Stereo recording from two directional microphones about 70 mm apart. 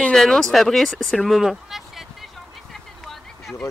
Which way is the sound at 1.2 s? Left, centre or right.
Centre.